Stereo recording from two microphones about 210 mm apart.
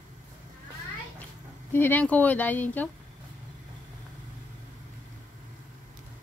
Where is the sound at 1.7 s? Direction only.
10° left (ahead or behind).